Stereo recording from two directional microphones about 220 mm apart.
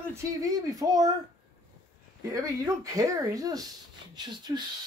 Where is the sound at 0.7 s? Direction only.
15° right (ahead or behind).